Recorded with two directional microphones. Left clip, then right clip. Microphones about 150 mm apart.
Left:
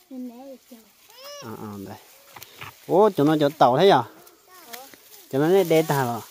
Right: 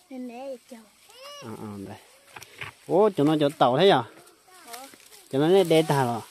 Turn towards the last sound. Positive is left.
turn(degrees=0)  # may be behind; listen again after turning